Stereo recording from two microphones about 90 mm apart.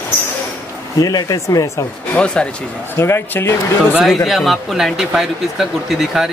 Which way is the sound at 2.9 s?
30° left (ahead or behind).